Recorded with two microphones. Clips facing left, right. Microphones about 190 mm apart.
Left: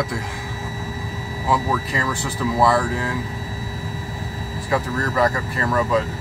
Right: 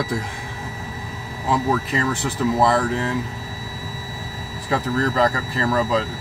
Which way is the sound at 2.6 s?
20° right (ahead or behind).